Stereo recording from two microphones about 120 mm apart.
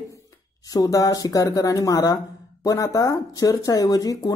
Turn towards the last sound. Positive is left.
turn(degrees=30)  # may be behind; listen again after turning